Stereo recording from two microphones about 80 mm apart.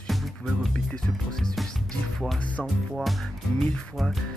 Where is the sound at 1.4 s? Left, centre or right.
Centre.